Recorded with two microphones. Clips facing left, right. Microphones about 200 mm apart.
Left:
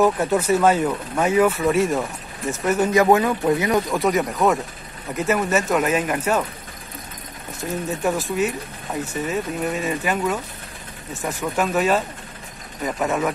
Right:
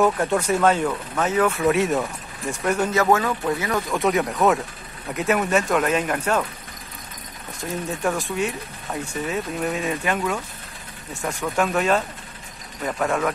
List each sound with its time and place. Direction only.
0.0 s speech: 5° left (ahead or behind)
3.9 s speech: centre (ahead or behind)
8.0 s speech: 5° left (ahead or behind)